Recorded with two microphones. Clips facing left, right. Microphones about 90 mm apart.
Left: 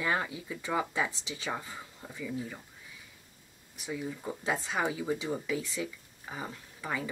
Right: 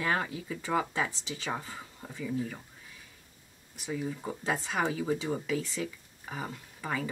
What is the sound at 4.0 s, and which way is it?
Speech, 5° left (ahead or behind).